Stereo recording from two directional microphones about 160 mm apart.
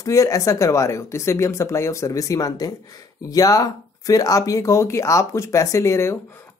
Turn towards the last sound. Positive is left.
turn(degrees=15)  # may be behind; listen again after turning